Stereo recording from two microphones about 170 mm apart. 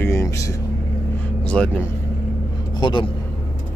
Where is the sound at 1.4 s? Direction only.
5° left (ahead or behind).